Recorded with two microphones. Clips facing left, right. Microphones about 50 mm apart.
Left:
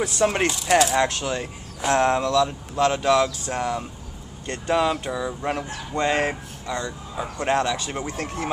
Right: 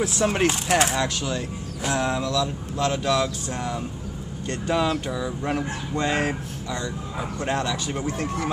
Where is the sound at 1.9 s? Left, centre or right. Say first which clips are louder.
Left 5 dB; left.